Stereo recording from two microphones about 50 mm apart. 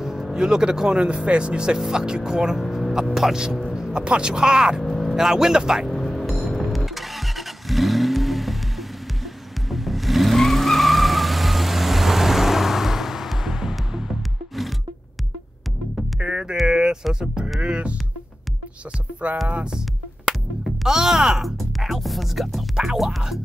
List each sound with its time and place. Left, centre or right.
0.0 s speech: centre
2.6 s a sound: centre
3.2 s speech: centre
4.8 s vehicle: centre
5.1 s speech: centre
5.9 s music: centre
6.5 s vehicle: centre
16.2 s music: right
16.6 s a sound: centre
17.1 s sheep: centre
17.6 s music: right
19.4 s speech: right
20.2 s music: centre
22.8 s speech: centre